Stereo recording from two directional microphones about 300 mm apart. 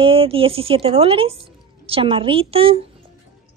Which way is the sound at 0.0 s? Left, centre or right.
Centre.